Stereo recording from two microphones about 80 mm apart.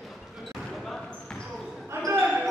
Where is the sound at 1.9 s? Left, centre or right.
Right.